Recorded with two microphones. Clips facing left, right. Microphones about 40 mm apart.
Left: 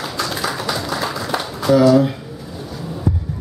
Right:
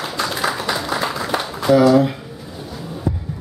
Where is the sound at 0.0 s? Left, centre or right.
Centre.